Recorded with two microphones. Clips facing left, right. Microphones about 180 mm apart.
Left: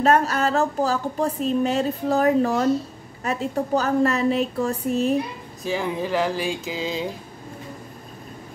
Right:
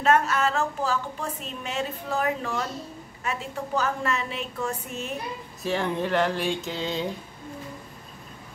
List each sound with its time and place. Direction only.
0.0 s a woman's voice: 35° left (ahead or behind)
5.6 s speech: centre (ahead or behind)